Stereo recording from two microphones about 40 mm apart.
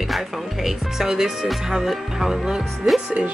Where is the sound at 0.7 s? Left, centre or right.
Centre.